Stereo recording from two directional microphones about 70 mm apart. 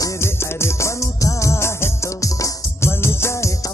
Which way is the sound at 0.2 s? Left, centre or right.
Left.